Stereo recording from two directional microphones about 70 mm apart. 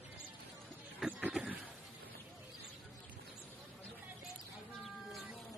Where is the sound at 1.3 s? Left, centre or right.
Centre.